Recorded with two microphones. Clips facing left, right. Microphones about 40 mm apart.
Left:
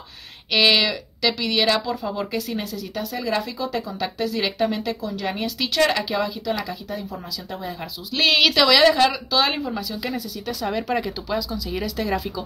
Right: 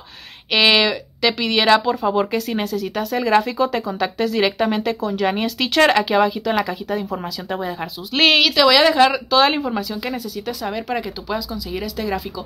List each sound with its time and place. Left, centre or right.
0.5 s speech: right
8.4 s speech: centre
8.9 s speech: right
10.6 s speech: centre